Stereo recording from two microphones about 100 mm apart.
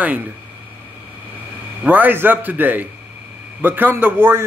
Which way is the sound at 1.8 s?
20° right (ahead or behind).